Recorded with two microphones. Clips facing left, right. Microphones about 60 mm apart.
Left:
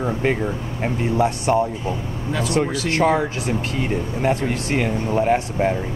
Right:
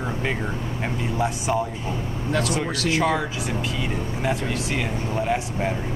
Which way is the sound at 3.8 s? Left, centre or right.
Left.